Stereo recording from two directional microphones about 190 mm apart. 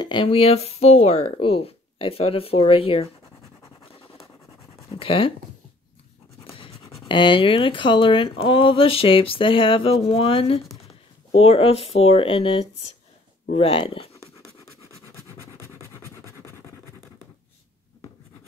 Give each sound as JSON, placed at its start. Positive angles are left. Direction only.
{"t": 0.0, "sound": "speech", "side_deg": 25}
{"t": 4.8, "sound": "writing", "side_deg": 30}
{"t": 7.1, "sound": "speech", "side_deg": 25}